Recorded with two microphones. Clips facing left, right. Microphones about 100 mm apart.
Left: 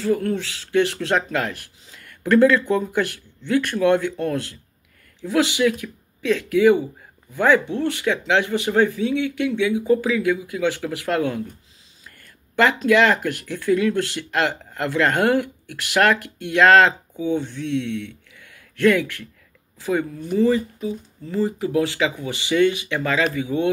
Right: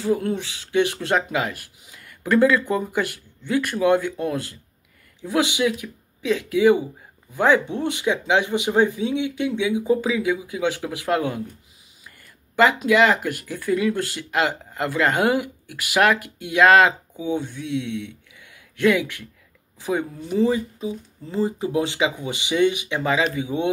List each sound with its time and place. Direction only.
0.0 s speech: 15° right (ahead or behind)
17.9 s a sound: 15° right (ahead or behind)
19.8 s speech: 15° right (ahead or behind)